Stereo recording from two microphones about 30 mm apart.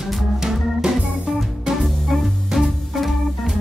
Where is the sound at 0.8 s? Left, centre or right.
Right.